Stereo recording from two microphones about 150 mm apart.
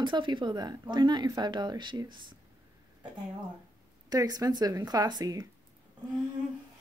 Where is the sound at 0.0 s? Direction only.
30° right (ahead or behind).